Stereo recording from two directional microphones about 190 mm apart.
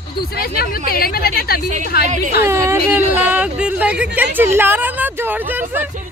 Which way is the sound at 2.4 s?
15° right (ahead or behind).